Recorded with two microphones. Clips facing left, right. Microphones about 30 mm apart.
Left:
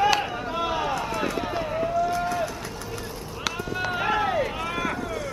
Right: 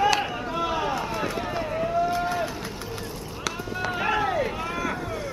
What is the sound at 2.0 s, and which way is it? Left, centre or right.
Run, centre.